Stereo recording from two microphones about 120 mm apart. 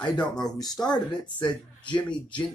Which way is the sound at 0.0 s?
35° left (ahead or behind).